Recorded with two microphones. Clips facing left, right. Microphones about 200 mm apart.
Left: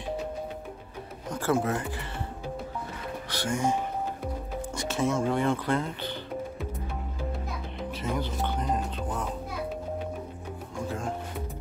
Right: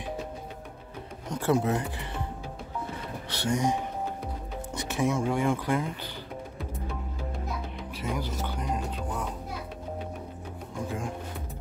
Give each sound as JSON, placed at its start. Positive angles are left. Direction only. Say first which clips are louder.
{"t": 1.3, "sound": "speech", "louder": "right 1 dB", "side_deg": -20}
{"t": 3.4, "sound": "speech", "louder": "right 1 dB", "side_deg": -20}
{"t": 4.7, "sound": "speech", "louder": "even", "side_deg": -15}
{"t": 8.0, "sound": "speech", "louder": "left 1 dB", "side_deg": -10}